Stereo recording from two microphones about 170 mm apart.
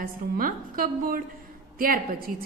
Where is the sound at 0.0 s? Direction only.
55° right (ahead or behind).